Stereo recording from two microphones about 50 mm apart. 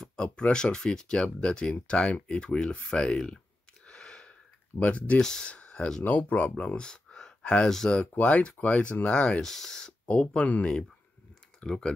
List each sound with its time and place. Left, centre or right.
0.0 s speech: centre
3.8 s a sound: centre
5.5 s speech: left
6.0 s speech: left
6.8 s a sound: centre
8.1 s speech: left
9.4 s speech: centre; by 10.7 s left
11.6 s speech: centre